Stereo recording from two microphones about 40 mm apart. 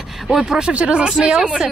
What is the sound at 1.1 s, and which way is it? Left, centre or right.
Speech, centre.